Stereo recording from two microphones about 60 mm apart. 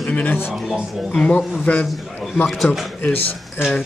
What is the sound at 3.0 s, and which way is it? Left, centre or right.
Speech, left.